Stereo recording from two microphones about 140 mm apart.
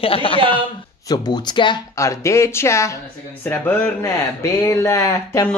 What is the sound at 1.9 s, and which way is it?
Speech, 20° left (ahead or behind).